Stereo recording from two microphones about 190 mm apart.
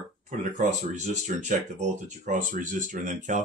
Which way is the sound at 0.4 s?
40° right (ahead or behind).